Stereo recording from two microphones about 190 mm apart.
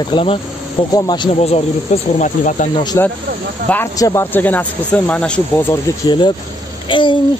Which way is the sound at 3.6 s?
10° left (ahead or behind).